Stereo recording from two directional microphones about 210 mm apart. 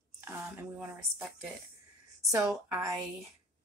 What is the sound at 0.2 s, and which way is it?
A woman's voice, 10° right (ahead or behind).